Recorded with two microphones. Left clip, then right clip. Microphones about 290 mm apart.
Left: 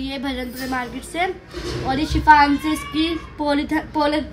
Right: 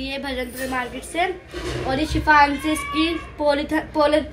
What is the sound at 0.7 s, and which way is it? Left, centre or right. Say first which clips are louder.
Speech: even; left.